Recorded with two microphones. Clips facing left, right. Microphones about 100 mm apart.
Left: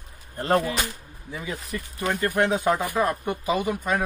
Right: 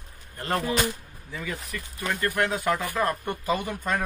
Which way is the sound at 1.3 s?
20° left (ahead or behind).